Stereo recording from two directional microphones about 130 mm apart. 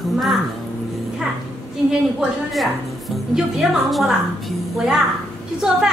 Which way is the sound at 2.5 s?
Centre (ahead or behind).